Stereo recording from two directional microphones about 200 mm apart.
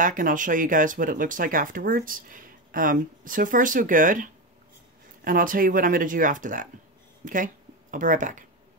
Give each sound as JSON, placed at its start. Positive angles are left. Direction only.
{"t": 0.0, "sound": "speech", "side_deg": -40}